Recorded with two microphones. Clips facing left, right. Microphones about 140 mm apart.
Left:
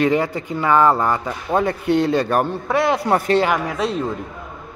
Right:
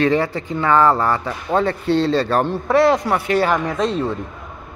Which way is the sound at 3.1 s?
35° left (ahead or behind).